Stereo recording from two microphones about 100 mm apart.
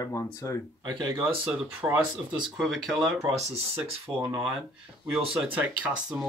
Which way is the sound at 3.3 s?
90° right.